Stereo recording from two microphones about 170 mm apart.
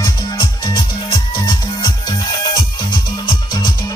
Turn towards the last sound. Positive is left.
turn(degrees=25)  # may be behind; listen again after turning